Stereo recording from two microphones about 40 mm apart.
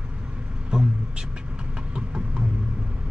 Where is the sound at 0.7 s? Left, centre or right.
Right.